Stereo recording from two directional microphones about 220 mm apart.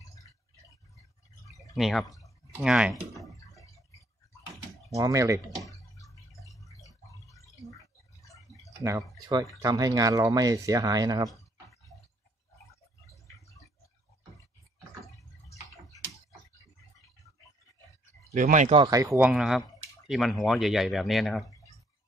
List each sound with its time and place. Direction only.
1.8 s speech: centre (ahead or behind)
2.5 s a sound: 5° right (ahead or behind)
4.9 s speech: 15° right (ahead or behind)
5.6 s bathtub: 15° left (ahead or behind)
7.3 s a sound: 15° left (ahead or behind)
8.8 s speech: 15° right (ahead or behind)
18.3 s speech: 35° right (ahead or behind)
18.8 s speech: 15° right (ahead or behind); by 21.5 s centre (ahead or behind)